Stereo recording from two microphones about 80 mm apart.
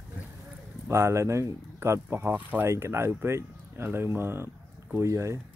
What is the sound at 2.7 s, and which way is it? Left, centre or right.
Speech, right.